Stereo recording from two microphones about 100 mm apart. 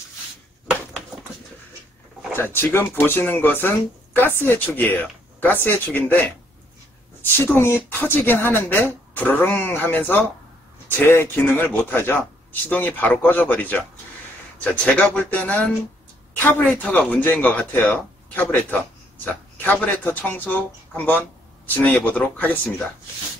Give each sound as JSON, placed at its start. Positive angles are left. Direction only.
{"t": 2.3, "sound": "speech", "side_deg": 20}